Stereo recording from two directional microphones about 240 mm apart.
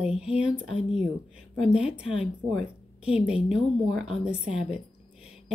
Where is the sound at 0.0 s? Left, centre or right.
Centre.